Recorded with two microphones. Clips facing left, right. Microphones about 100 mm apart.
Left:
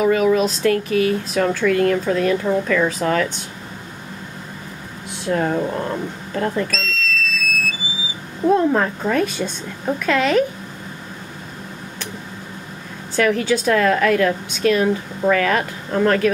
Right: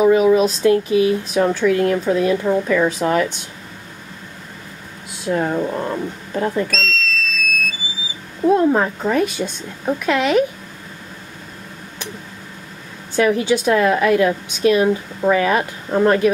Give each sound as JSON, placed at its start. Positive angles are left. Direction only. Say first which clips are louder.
{"t": 0.0, "sound": "a woman's voice", "louder": "right 3 dB", "side_deg": -15}
{"t": 5.2, "sound": "a woman's voice", "louder": "even", "side_deg": -10}
{"t": 5.8, "sound": "a woman's voice", "louder": "right 1 dB", "side_deg": -20}
{"t": 6.7, "sound": "a sound", "louder": "right 2 dB", "side_deg": 5}
{"t": 8.5, "sound": "a woman's voice", "louder": "right 1 dB", "side_deg": -5}
{"t": 13.1, "sound": "a woman's voice", "louder": "right 2 dB", "side_deg": -15}